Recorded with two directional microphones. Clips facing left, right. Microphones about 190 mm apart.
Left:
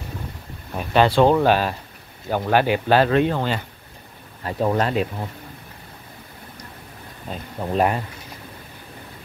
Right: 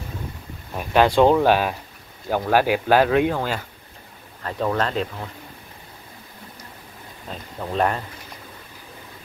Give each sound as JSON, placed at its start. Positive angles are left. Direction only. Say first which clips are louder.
{"t": 0.7, "sound": "speech", "louder": "even", "side_deg": -10}
{"t": 4.4, "sound": "speech", "louder": "left 2 dB", "side_deg": 20}
{"t": 7.6, "sound": "speech", "louder": "left 2 dB", "side_deg": 10}